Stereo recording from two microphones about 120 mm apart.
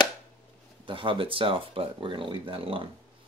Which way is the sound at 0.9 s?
45° right (ahead or behind).